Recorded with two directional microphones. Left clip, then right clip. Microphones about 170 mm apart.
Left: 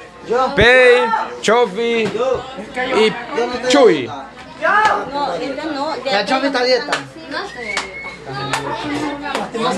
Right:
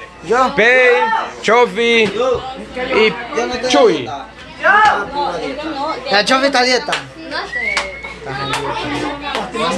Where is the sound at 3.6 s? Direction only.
20° left (ahead or behind).